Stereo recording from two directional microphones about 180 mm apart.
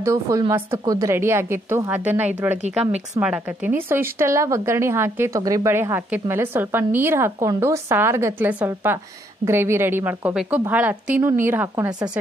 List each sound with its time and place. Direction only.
0.0 s speech: 20° right (ahead or behind)